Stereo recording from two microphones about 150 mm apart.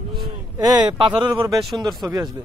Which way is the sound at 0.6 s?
25° right (ahead or behind).